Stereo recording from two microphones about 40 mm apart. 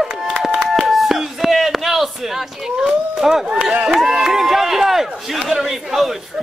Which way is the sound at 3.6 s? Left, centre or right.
Right.